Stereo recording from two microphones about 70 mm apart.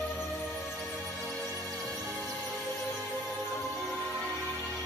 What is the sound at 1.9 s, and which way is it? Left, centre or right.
Music, centre.